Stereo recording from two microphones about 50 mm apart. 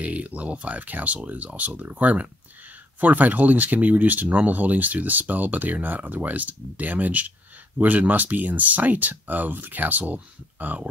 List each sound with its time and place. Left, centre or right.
0.0 s speech: right